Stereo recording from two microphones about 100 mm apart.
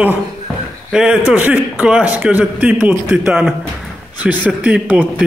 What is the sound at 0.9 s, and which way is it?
A man's voice, 5° right (ahead or behind).